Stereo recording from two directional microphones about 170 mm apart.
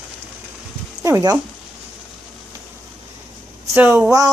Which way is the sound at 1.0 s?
15° right (ahead or behind).